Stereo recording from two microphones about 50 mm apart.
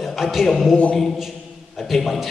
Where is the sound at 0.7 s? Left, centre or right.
Centre.